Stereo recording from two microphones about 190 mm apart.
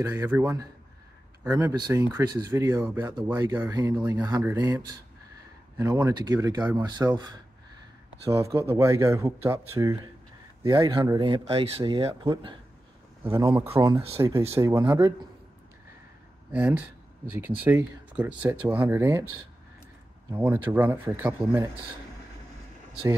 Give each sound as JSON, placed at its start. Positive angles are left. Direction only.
{"t": 0.0, "sound": "speech", "side_deg": -15}
{"t": 8.3, "sound": "speech", "side_deg": -15}
{"t": 13.2, "sound": "speech", "side_deg": -15}
{"t": 16.5, "sound": "speech", "side_deg": -5}
{"t": 20.6, "sound": "speech", "side_deg": -10}